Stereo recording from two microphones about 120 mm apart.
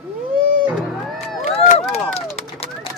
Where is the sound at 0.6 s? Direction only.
Centre (ahead or behind).